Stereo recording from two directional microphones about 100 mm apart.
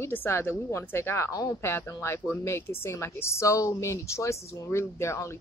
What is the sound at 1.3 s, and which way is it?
Speech, 40° left (ahead or behind).